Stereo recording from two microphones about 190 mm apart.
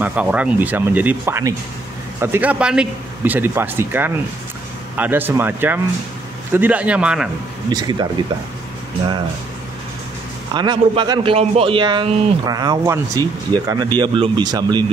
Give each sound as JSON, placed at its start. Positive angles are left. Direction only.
{"t": 0.0, "sound": "speech", "side_deg": -5}
{"t": 7.7, "sound": "a man's voice", "side_deg": -20}
{"t": 10.5, "sound": "a man's voice", "side_deg": -25}